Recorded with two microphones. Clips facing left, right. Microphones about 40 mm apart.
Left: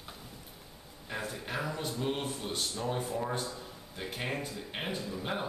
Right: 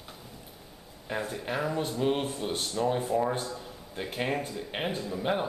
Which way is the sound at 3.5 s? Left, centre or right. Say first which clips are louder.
Right 5 dB; centre.